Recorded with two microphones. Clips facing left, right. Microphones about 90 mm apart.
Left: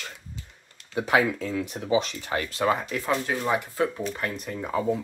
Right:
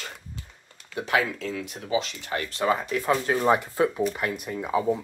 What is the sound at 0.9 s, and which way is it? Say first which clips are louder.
Speech: left 3 dB; 15° left (ahead or behind).